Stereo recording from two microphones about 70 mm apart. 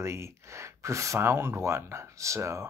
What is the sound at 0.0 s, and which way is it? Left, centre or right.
Speech, right.